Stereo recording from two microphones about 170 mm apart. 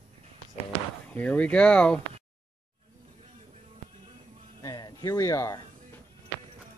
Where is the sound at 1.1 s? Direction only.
10° left (ahead or behind).